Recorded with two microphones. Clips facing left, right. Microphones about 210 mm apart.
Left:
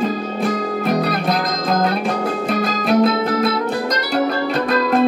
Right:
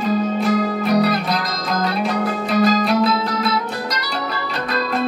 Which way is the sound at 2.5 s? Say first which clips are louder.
Right 2 dB; 50° left (ahead or behind).